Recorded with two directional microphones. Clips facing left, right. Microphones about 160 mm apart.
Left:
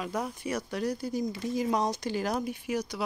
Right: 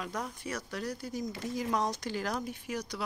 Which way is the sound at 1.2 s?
25° left (ahead or behind).